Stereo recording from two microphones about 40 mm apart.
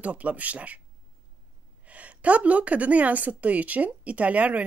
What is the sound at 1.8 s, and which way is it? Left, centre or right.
Speech, right.